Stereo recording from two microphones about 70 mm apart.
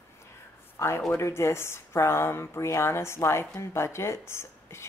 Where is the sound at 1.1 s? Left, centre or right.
Left.